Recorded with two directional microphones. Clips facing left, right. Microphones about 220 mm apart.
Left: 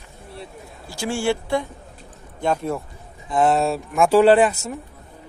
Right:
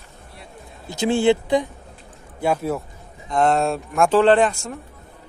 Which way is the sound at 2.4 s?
5° right (ahead or behind).